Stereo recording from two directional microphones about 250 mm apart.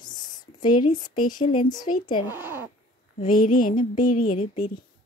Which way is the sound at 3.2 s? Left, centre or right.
Left.